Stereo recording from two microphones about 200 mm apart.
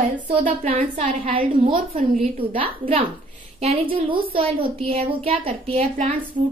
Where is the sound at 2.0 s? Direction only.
30° right (ahead or behind).